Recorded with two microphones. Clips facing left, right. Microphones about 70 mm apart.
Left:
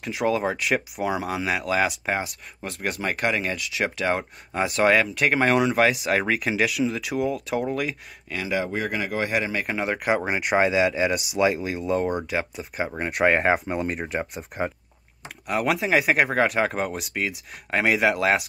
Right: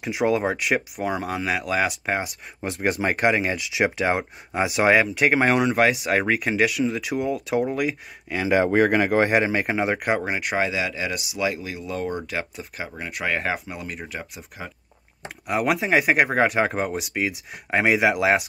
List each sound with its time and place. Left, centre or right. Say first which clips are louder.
0.0 s speech: right 2 dB; centre
2.6 s speech: right 5 dB; right; by 7.9 s centre
8.5 s speech: right 8 dB; right
9.8 s speech: right 1 dB; centre
10.5 s speech: left 6 dB; left
12.3 s speech: left 2 dB; centre
12.7 s speech: left 6 dB; left
15.4 s speech: right 1 dB; centre